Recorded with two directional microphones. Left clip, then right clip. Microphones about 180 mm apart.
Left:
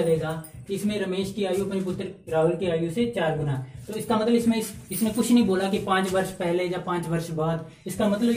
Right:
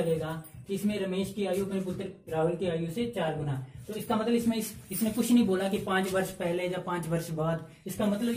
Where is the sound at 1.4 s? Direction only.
10° right (ahead or behind).